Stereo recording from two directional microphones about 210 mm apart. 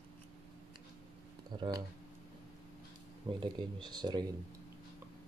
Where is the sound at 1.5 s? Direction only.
20° right (ahead or behind).